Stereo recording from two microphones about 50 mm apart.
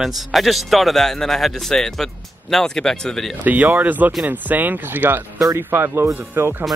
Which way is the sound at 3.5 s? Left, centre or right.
Right.